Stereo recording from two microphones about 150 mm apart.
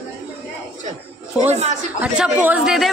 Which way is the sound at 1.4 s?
50° right (ahead or behind).